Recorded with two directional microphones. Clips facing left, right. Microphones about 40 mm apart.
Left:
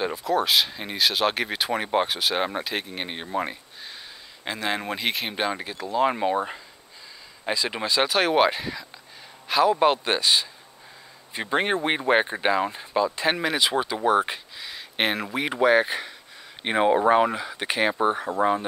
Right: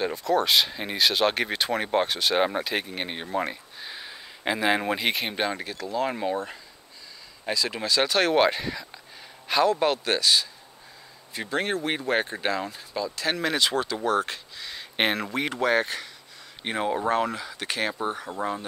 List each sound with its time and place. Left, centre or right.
0.0 s speech: centre
3.9 s speech: centre
9.7 s speech: centre
13.4 s speech: centre
14.6 s a sound: centre
15.5 s speech: centre